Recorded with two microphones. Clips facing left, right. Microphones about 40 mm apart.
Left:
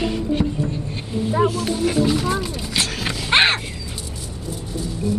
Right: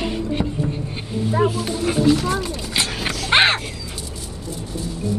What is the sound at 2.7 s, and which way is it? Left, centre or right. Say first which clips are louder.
Dog: even; centre.